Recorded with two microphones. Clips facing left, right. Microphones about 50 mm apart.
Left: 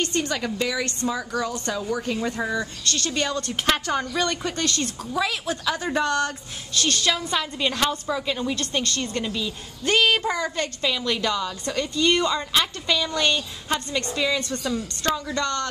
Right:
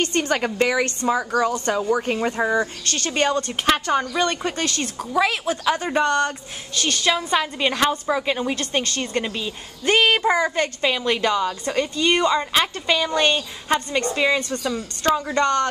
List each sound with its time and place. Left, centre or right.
0.1 s speech: right
3.3 s speech: centre
5.9 s a woman's voice: centre; by 15.7 s right